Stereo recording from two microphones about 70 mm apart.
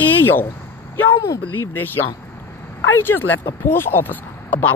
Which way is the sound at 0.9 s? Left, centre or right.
Left.